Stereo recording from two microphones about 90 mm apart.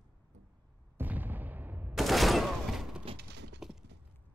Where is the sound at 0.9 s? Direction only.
20° right (ahead or behind).